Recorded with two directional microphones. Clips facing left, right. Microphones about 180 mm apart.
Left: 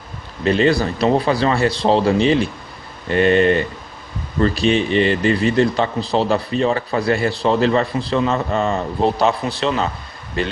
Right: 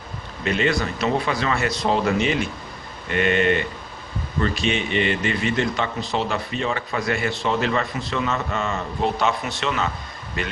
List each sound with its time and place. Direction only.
0.4 s a man's voice: 35° left (ahead or behind)